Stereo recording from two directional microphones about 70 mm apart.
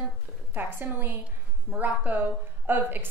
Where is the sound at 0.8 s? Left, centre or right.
Right.